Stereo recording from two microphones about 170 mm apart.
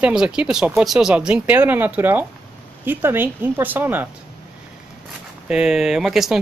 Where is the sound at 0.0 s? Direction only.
5° right (ahead or behind).